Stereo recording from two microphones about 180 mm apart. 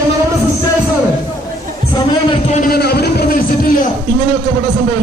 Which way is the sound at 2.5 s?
50° left (ahead or behind).